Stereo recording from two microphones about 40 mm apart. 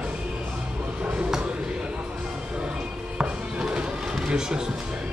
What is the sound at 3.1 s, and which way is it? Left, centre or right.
Music, right.